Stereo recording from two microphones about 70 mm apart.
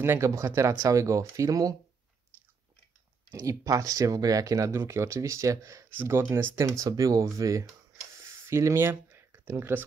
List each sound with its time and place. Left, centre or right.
0.0 s speech: right
3.4 s speech: right
5.9 s speech: right
6.6 s speech: right